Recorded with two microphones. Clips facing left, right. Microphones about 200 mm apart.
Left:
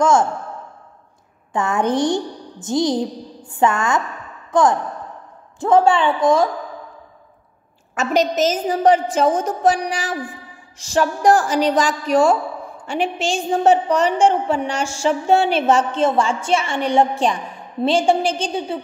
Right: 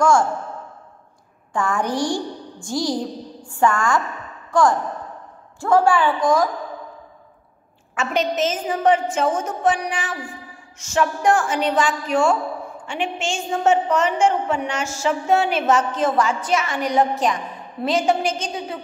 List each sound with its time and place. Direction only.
0.0 s a woman's voice: 20° left (ahead or behind)
1.5 s a woman's voice: 20° left (ahead or behind)
7.9 s a woman's voice: 40° left (ahead or behind)